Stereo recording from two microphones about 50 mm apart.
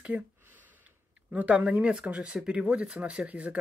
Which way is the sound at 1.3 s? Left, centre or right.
Right.